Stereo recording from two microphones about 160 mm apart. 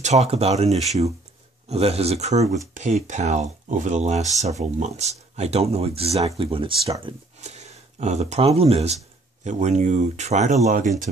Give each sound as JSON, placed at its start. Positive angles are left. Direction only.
{"t": 0.0, "sound": "speech", "side_deg": -45}
{"t": 7.4, "sound": "speech", "side_deg": -45}